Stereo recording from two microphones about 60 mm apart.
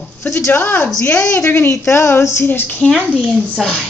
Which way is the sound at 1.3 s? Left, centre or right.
Left.